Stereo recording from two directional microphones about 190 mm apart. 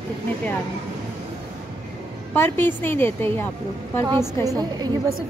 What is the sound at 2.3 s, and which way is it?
A woman's voice, 10° left (ahead or behind).